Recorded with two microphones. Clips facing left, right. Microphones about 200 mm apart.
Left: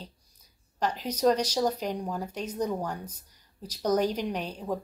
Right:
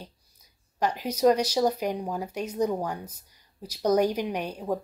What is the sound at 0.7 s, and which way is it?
Speech, 10° right (ahead or behind).